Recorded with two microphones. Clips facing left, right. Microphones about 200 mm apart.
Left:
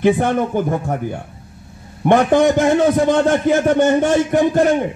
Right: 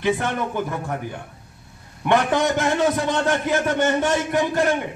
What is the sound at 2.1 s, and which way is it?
A man's voice, 50° left (ahead or behind).